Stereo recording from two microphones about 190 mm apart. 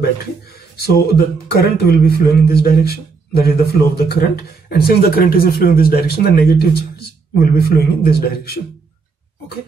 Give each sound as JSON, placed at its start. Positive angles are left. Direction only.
{"t": 0.7, "sound": "speech", "side_deg": 55}